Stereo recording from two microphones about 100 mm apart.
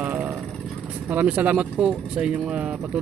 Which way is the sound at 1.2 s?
15° right (ahead or behind).